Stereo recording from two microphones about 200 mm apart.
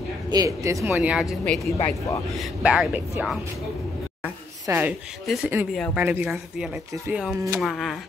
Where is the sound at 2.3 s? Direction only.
5° right (ahead or behind).